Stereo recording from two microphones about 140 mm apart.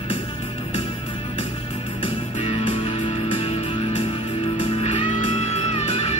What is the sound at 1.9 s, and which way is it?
Music, 40° left (ahead or behind).